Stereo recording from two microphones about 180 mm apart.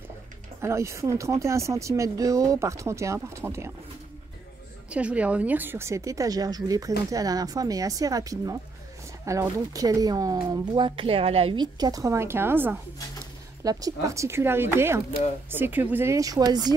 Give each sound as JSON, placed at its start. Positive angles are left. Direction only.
{"t": 0.6, "sound": "speech", "side_deg": -15}
{"t": 4.9, "sound": "speech", "side_deg": -5}